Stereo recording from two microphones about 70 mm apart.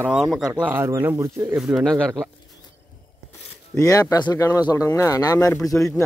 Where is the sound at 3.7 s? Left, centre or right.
Left.